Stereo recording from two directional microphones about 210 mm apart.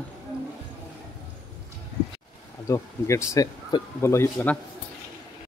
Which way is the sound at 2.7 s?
15° left (ahead or behind).